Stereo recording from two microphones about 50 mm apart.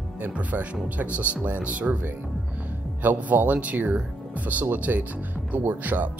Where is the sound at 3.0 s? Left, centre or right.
Right.